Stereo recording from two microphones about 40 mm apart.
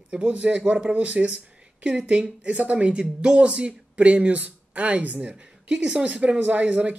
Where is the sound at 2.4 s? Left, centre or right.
Right.